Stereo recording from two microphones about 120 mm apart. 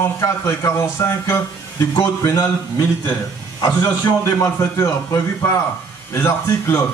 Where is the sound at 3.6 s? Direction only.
30° left (ahead or behind).